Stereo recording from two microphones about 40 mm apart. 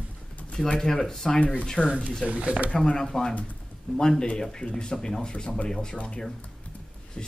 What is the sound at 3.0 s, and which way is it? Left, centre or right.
Speech, centre.